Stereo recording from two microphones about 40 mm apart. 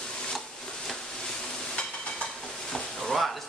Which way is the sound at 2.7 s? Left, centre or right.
Centre.